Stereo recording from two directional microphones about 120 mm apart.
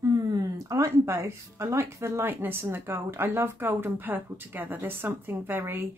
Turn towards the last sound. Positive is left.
turn(degrees=-20)  # may be behind; listen again after turning